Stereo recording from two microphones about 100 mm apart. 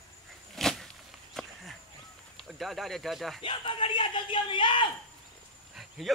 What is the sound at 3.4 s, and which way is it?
A man's voice, 60° left (ahead or behind).